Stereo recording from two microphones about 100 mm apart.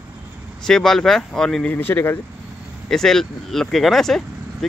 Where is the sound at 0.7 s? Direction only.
5° left (ahead or behind).